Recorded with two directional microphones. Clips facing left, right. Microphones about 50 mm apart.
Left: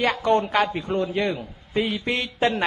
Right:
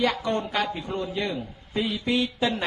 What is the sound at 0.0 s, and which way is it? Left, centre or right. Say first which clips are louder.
A man's voice: left 4 dB; left.